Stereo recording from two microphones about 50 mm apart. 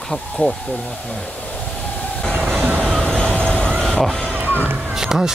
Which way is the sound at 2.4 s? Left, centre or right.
Right.